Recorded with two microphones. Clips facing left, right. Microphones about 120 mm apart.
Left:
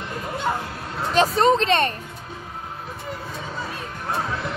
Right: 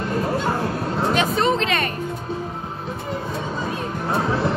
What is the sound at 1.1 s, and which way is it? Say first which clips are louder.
Speech: left 5 dB; 35° left (ahead or behind).